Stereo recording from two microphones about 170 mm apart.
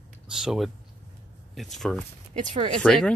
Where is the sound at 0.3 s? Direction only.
5° right (ahead or behind).